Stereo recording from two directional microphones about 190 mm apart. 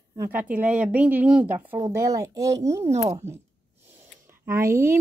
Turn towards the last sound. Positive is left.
turn(degrees=-15)  # may be behind; listen again after turning